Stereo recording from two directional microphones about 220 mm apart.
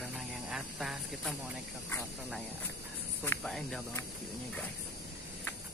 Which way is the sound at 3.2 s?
Centre (ahead or behind).